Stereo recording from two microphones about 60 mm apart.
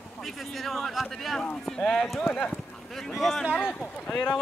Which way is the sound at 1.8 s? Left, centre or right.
Centre.